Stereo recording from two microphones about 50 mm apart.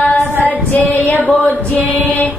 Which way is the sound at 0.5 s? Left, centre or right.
Left.